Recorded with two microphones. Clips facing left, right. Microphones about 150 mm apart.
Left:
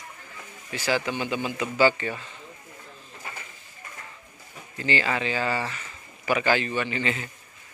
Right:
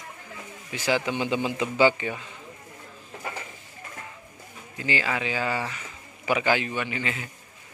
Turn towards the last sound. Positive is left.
turn(degrees=-5)  # may be behind; listen again after turning